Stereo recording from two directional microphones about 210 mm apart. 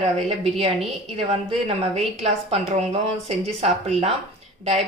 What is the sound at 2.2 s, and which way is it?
A woman's voice, 30° right (ahead or behind).